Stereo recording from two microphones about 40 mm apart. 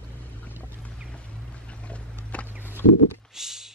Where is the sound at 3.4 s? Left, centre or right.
Centre.